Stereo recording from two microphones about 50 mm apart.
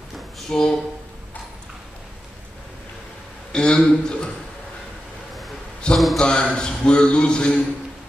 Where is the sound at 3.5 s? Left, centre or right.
Centre.